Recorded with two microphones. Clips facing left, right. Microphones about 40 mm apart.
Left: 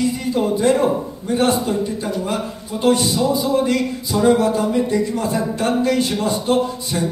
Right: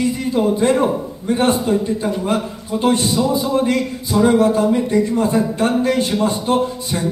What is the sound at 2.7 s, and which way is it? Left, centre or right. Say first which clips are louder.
A man's voice: even; right.